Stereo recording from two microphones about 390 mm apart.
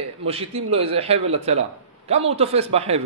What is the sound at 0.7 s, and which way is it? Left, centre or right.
A man's voice, centre.